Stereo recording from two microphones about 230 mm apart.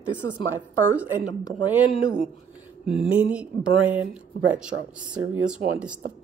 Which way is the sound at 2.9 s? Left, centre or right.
Centre.